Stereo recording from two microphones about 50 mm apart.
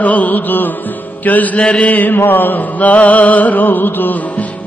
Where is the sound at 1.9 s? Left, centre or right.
Left.